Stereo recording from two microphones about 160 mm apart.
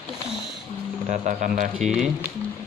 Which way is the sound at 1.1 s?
55° right (ahead or behind).